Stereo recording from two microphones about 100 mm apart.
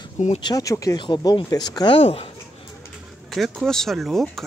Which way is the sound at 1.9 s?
70° left (ahead or behind).